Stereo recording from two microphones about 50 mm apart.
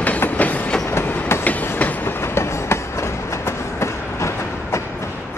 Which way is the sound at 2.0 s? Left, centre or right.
Left.